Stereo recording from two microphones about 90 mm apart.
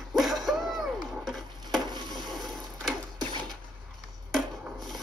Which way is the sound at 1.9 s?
55° right (ahead or behind).